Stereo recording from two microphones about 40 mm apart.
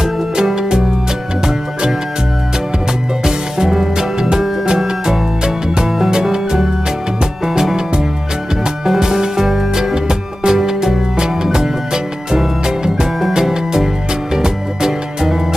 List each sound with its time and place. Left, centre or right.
0.0 s music: centre
3.3 s music: centre
7.7 s music: centre